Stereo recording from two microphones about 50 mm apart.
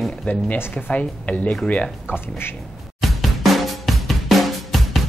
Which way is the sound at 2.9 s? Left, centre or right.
Centre.